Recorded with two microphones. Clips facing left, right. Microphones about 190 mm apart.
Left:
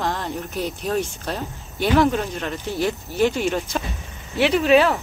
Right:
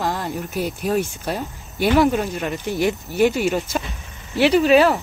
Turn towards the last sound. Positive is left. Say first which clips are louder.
# right 2 dB
turn(degrees=0)  # may be behind; listen again after turning